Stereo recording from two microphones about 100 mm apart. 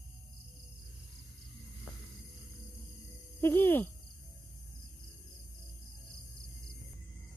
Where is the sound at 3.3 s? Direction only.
20° left (ahead or behind).